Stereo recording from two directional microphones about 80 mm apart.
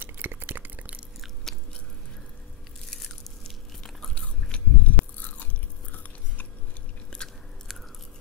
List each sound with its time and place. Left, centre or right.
0.0 s a sound: right
1.5 s chewing: centre
2.9 s biting: centre
7.1 s biting: centre